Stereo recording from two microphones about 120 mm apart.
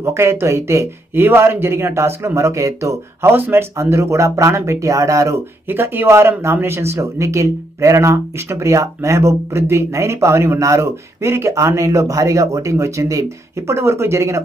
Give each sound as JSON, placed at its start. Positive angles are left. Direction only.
{"t": 0.0, "sound": "speech", "side_deg": -20}